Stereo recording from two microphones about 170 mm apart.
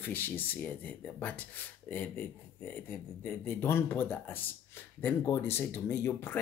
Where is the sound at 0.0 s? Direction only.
10° left (ahead or behind).